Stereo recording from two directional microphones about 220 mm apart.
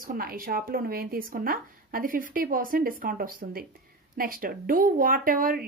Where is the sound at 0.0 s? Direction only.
40° right (ahead or behind).